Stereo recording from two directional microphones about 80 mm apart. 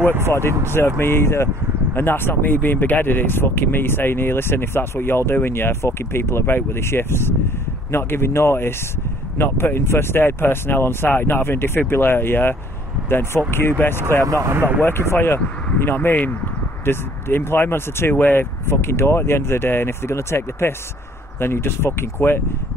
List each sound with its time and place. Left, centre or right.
0.7 s speech: left
14.2 s speech: right
14.5 s speech: right
14.8 s speech: left